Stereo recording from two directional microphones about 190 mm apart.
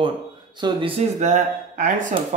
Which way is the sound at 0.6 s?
25° right (ahead or behind).